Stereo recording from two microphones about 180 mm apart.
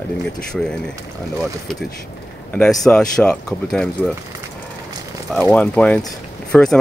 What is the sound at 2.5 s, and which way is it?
Speech, 5° left (ahead or behind).